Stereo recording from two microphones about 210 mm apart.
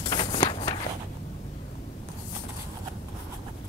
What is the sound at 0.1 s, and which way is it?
Walk, 20° left (ahead or behind).